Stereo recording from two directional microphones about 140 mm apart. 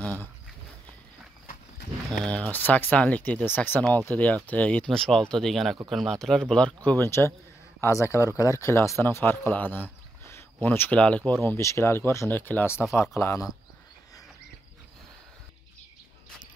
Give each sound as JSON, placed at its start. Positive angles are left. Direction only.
{"t": 2.0, "sound": "speech", "side_deg": 5}
{"t": 6.9, "sound": "speech", "side_deg": 20}